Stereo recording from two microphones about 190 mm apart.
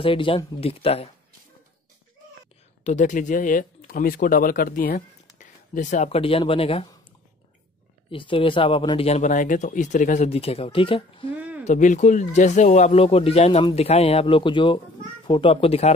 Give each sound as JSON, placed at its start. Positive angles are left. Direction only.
{"t": 0.0, "sound": "speech", "side_deg": 30}
{"t": 2.8, "sound": "speech", "side_deg": 40}
{"t": 8.1, "sound": "speech", "side_deg": 25}
{"t": 11.6, "sound": "speech", "side_deg": 40}